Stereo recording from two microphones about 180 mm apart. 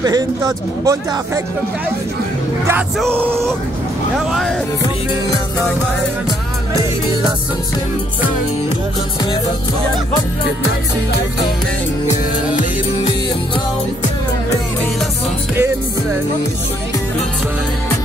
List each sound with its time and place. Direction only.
0.0 s speech: 20° right (ahead or behind)
3.2 s speech: 10° right (ahead or behind)
4.3 s speech: centre (ahead or behind)
15.5 s music: 15° right (ahead or behind)